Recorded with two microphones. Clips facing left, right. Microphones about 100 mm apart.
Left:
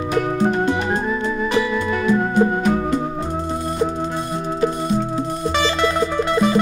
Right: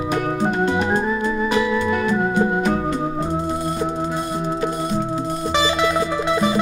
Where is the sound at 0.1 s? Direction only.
5° right (ahead or behind).